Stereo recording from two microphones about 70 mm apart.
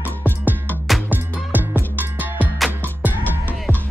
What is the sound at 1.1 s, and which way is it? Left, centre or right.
Music, right.